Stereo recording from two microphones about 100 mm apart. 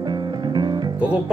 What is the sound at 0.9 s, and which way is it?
Music, 10° right (ahead or behind).